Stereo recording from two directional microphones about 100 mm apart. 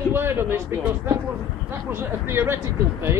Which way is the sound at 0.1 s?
25° right (ahead or behind).